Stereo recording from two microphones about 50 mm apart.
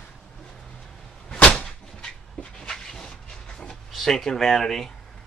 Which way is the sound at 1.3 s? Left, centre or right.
Left.